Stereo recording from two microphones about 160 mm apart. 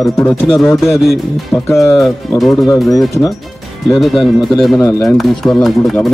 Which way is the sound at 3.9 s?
Centre (ahead or behind).